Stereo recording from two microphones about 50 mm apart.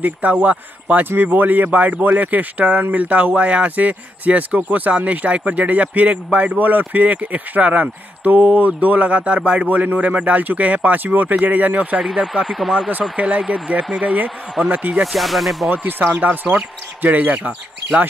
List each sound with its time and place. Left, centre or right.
0.0 s speech: right
12.0 s speech: centre
13.1 s speech: right
15.1 s speech: centre
15.7 s speech: right